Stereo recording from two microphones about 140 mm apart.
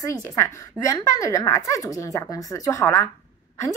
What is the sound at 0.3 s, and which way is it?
A woman's voice, 20° left (ahead or behind).